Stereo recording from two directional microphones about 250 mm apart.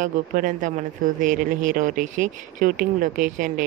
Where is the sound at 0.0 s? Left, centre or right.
Right.